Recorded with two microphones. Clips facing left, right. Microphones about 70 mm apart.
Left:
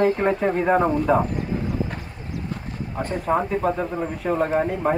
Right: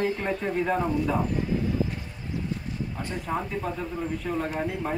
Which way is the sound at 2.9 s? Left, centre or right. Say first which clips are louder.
Left 10 dB; left.